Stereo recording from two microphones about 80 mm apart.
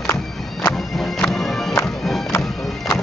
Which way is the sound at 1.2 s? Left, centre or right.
Centre.